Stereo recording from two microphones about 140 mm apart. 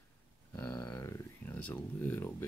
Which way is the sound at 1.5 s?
10° left (ahead or behind).